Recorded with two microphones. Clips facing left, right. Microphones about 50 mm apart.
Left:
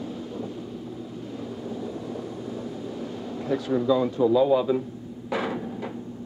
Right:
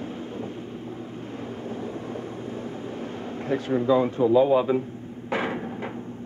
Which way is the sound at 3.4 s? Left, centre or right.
Right.